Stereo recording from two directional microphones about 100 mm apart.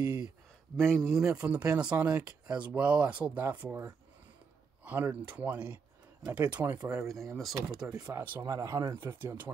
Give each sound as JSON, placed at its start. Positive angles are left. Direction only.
{"t": 0.0, "sound": "a sound", "side_deg": -30}
{"t": 0.7, "sound": "speech", "side_deg": 5}
{"t": 1.2, "sound": "speech", "side_deg": -10}
{"t": 4.8, "sound": "speech", "side_deg": -15}
{"t": 7.3, "sound": "speech", "side_deg": -5}
{"t": 7.9, "sound": "speech", "side_deg": -35}